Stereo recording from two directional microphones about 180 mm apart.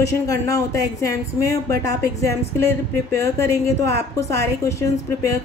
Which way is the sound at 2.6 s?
15° left (ahead or behind).